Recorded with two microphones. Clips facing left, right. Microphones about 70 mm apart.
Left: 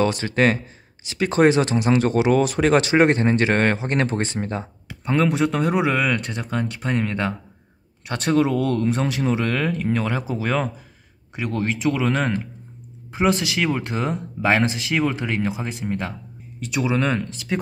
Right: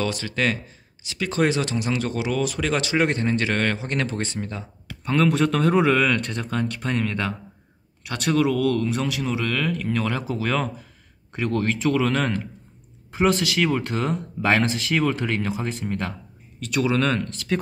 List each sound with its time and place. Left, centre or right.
0.0 s speech: left
4.8 s speech: centre